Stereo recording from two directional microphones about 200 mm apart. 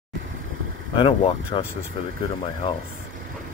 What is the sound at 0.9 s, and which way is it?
Speech, 25° left (ahead or behind).